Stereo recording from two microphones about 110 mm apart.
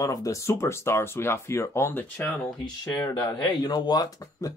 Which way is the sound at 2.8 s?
30° left (ahead or behind).